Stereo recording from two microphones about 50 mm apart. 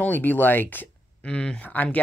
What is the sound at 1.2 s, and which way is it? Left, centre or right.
Speech, centre.